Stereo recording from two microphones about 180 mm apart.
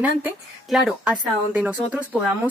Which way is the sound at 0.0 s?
5° right (ahead or behind).